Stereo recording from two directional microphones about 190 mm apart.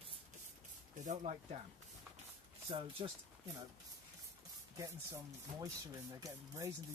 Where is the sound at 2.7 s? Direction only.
25° right (ahead or behind).